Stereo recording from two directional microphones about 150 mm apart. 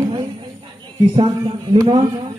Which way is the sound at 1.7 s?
25° right (ahead or behind).